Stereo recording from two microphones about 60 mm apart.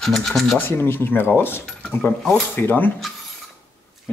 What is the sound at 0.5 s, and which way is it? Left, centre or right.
Speech, left.